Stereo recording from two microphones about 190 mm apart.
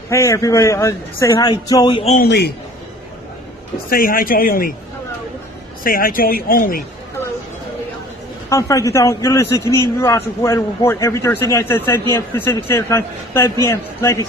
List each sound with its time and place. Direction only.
0.1 s a man's voice: 15° left (ahead or behind)
2.1 s a man's voice: 60° left (ahead or behind)
3.9 s speech: 50° left (ahead or behind)
5.9 s speech: 50° left (ahead or behind)
8.5 s a man's voice: 15° left (ahead or behind)